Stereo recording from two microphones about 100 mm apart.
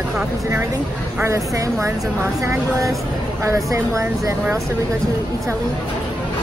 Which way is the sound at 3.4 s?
30° right (ahead or behind).